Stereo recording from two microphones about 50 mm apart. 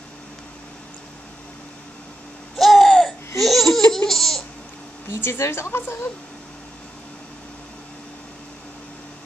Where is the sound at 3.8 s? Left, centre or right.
Centre.